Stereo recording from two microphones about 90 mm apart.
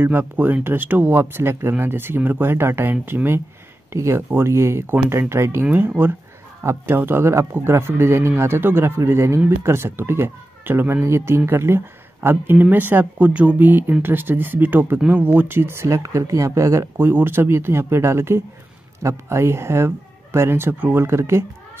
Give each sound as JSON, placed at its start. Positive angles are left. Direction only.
{"t": 0.0, "sound": "speech", "side_deg": -20}
{"t": 6.6, "sound": "speech", "side_deg": -30}
{"t": 16.9, "sound": "speech", "side_deg": -25}